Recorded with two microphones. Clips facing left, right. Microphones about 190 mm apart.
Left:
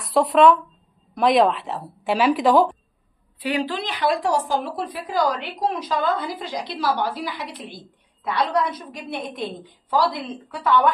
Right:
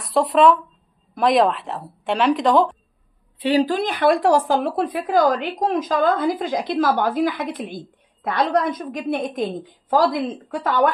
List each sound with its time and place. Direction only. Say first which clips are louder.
0.0 s speech: even; centre (ahead or behind)
3.3 s a woman's voice: right 6 dB; 30° right (ahead or behind)
3.6 s a woman's voice: right 6 dB; 50° right (ahead or behind)